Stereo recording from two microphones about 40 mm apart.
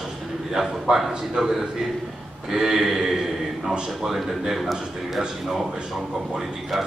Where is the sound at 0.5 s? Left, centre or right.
Centre.